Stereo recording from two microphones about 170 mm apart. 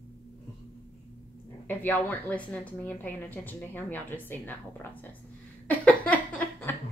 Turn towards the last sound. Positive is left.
turn(degrees=10)  # may be behind; listen again after turning